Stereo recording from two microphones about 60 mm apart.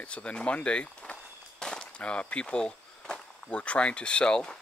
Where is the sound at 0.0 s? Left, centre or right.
Centre.